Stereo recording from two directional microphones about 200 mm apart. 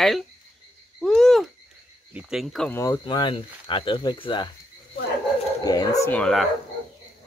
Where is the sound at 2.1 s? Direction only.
Centre (ahead or behind).